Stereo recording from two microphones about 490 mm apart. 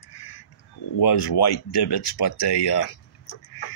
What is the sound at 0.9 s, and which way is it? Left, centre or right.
Speech, left.